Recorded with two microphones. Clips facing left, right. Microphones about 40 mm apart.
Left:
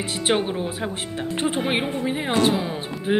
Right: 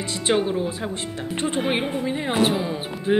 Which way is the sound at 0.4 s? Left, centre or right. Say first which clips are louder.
Right 2 dB; left.